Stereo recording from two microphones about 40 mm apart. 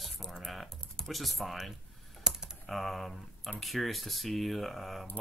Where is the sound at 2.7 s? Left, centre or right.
Centre.